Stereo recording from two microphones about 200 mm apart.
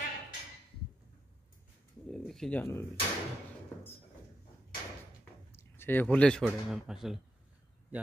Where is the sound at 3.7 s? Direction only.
10° left (ahead or behind).